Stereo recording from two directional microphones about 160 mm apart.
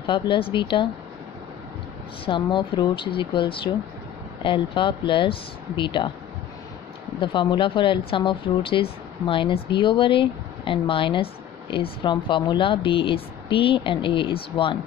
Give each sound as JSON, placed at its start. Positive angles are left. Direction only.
{"t": 0.0, "sound": "speech", "side_deg": 30}
{"t": 2.2, "sound": "speech", "side_deg": 30}
{"t": 7.2, "sound": "speech", "side_deg": 30}